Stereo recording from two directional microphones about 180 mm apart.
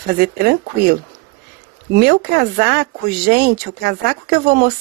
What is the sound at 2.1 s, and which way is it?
Speech, 55° right (ahead or behind).